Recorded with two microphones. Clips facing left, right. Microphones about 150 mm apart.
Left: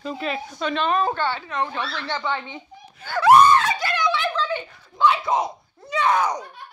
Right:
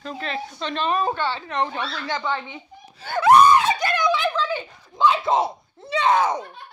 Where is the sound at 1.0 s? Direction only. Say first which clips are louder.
Even; 20° right (ahead or behind).